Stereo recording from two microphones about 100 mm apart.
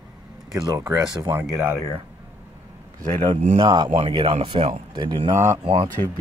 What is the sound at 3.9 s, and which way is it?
Speech, 65° right (ahead or behind).